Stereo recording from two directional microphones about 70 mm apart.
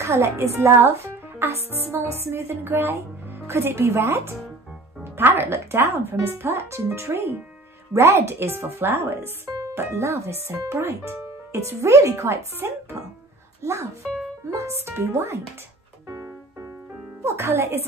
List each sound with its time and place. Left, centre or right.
0.0 s a woman's voice: right
9.5 s music: right
9.8 s a woman's voice: right
16.1 s music: right
17.2 s speech: right